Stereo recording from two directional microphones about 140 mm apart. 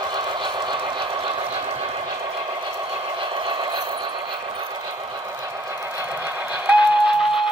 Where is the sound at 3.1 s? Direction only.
35° right (ahead or behind).